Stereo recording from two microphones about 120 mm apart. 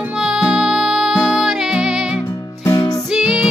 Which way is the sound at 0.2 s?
5° right (ahead or behind).